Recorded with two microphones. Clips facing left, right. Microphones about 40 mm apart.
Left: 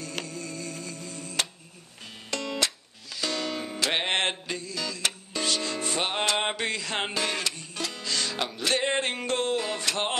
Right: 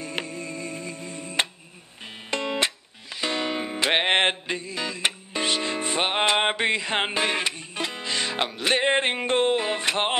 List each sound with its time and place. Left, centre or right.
0.0 s music: right